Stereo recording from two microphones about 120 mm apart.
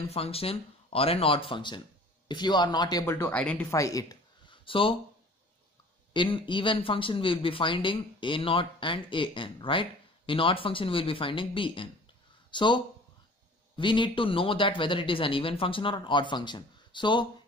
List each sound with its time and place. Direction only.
0.0 s speech: 55° left (ahead or behind); by 3.1 s 35° left (ahead or behind)
3.1 s speech: 15° left (ahead or behind)
3.7 s speech: 30° left (ahead or behind)
4.5 s a sound: 45° left (ahead or behind)
6.1 s speech: 45° left (ahead or behind)